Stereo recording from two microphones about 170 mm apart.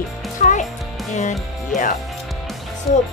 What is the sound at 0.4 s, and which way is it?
Music, 50° left (ahead or behind).